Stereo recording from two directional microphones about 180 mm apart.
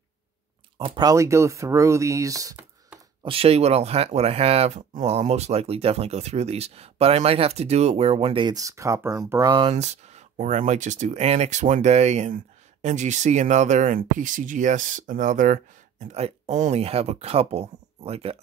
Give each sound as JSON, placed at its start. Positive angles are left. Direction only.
{"t": 0.7, "sound": "speech", "side_deg": -30}
{"t": 3.3, "sound": "speech", "side_deg": -30}